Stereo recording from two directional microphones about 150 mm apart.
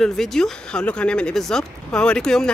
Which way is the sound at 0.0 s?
Centre (ahead or behind).